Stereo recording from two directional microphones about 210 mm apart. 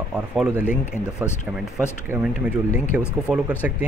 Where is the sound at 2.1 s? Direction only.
10° right (ahead or behind).